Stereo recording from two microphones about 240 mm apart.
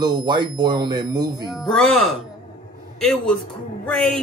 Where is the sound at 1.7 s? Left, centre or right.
Centre.